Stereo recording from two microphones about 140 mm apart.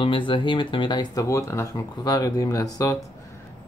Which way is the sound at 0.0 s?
35° left (ahead or behind).